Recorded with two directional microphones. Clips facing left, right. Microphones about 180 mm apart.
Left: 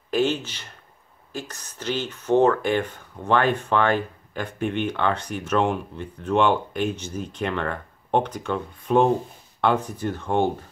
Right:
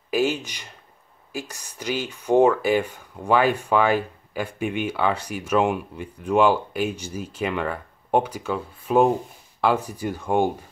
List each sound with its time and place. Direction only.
0.1 s speech: 10° right (ahead or behind)